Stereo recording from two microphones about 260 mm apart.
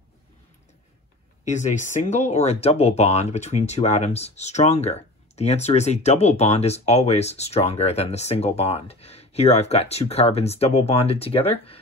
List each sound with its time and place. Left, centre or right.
1.4 s speech: left